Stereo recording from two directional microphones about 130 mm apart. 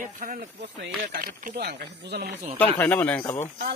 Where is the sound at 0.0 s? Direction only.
85° right.